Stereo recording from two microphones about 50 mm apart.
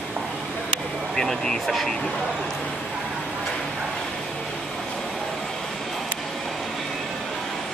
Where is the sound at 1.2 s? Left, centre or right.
Centre.